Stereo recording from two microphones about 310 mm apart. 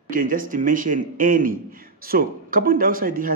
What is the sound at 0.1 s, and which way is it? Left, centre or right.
A man's voice, right.